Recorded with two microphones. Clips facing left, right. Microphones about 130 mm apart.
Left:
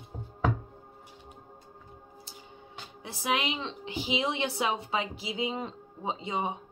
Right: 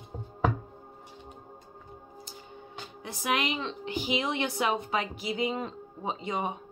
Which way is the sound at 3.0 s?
25° left (ahead or behind).